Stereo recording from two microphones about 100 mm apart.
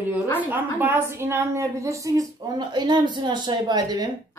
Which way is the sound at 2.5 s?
45° right (ahead or behind).